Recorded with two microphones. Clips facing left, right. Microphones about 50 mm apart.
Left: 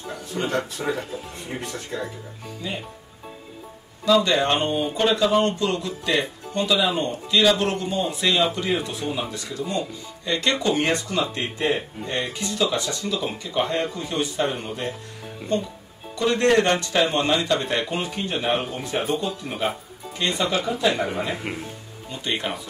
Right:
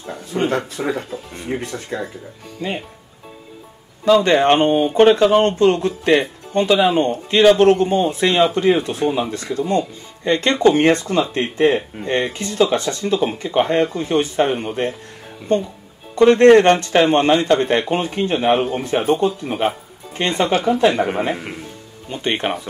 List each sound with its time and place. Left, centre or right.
0.3 s speech: right
0.6 s speech: right
1.5 s speech: right
1.9 s speech: right
4.0 s speech: right
16.2 s speech: right